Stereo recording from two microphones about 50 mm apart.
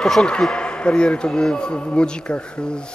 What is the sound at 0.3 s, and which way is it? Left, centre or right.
Speech, centre.